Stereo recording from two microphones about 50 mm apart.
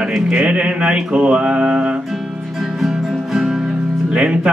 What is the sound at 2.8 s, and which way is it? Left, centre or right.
Music, centre.